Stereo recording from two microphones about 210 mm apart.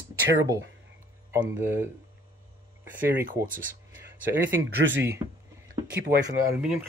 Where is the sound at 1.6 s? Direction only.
10° right (ahead or behind).